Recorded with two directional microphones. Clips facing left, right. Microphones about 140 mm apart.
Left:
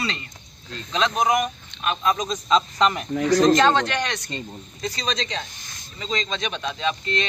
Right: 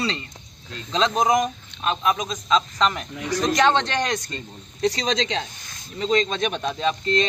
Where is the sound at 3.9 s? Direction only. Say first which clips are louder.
Right 2 dB; 40° right (ahead or behind).